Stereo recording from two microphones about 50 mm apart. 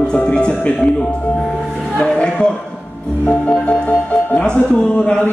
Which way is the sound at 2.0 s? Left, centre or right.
Centre.